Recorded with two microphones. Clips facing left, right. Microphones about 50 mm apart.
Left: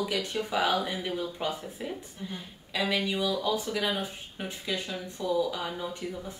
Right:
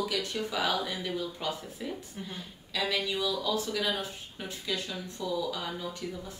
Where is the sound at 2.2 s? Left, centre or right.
Right.